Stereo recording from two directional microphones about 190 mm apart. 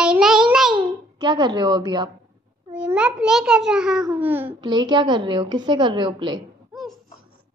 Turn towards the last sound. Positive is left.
turn(degrees=0)  # may be behind; listen again after turning